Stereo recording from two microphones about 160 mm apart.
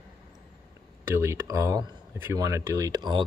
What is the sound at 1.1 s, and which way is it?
Speech, 15° right (ahead or behind).